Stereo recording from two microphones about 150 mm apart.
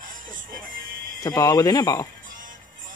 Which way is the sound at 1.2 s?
25° left (ahead or behind).